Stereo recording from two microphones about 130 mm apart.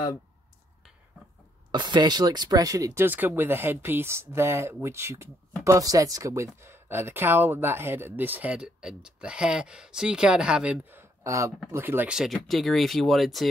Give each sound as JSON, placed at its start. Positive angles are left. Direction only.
{"t": 1.7, "sound": "speech", "side_deg": -35}